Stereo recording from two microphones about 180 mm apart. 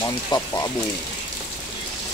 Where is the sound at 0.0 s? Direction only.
20° left (ahead or behind).